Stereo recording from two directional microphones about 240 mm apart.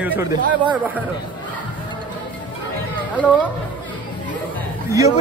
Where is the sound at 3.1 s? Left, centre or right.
Centre.